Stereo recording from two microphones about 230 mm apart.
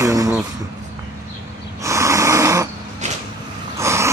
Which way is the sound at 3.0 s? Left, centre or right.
Right.